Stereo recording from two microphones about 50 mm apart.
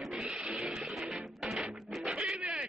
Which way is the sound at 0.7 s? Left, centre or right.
Centre.